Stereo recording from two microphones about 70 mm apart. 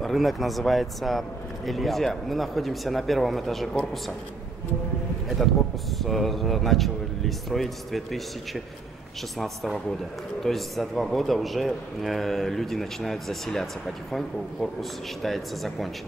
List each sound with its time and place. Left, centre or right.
0.0 s speech: centre
5.3 s speech: centre